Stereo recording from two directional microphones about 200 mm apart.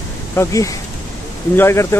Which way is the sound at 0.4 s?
15° left (ahead or behind).